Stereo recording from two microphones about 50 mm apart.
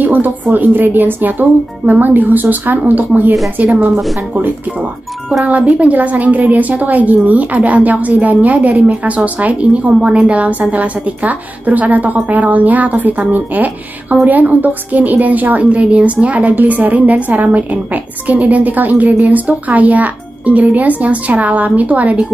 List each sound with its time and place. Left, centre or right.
0.0 s a woman's voice: right
5.4 s a woman's voice: right